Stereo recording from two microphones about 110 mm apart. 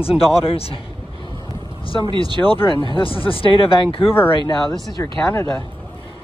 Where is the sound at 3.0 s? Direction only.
55° left (ahead or behind).